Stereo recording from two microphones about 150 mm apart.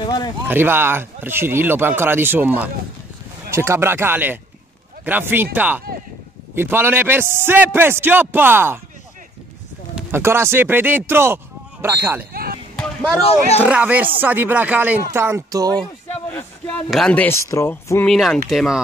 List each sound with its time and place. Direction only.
0.0 s speech: 25° left (ahead or behind)
0.5 s speech: 15° right (ahead or behind)
9.9 s speech: 15° right (ahead or behind)
12.3 s basketball bounce: 85° right
12.7 s a sound: 5° left (ahead or behind)
13.7 s speech: 10° right (ahead or behind)
16.3 s speech: 10° left (ahead or behind)
18.0 s speech: centre (ahead or behind)